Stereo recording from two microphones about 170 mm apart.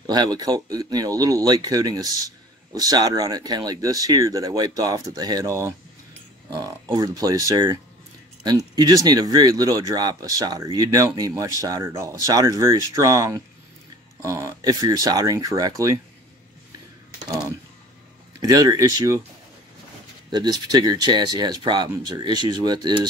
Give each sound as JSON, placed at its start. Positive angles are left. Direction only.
{"t": 0.0, "sound": "speech", "side_deg": -25}
{"t": 18.4, "sound": "speech", "side_deg": -20}
{"t": 20.2, "sound": "speech", "side_deg": -25}